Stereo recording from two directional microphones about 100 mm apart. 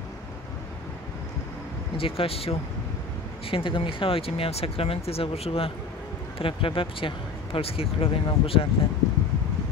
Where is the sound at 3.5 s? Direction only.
60° left (ahead or behind); by 5.7 s 80° left.